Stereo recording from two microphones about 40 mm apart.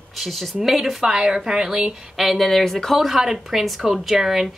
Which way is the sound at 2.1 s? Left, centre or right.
Centre.